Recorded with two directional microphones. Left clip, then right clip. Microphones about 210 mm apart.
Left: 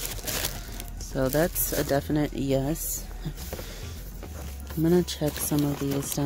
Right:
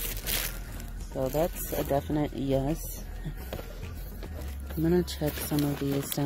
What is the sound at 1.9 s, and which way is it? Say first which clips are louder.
Speech: left 2 dB; 15° left (ahead or behind).